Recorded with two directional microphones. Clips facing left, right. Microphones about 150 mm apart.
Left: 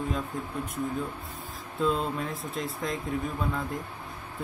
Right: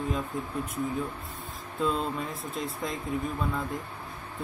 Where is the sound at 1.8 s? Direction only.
Centre (ahead or behind).